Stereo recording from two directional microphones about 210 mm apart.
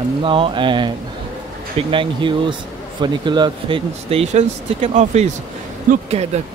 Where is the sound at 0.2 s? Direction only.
25° right (ahead or behind).